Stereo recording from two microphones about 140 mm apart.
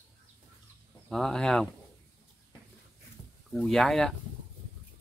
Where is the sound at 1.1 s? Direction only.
5° left (ahead or behind).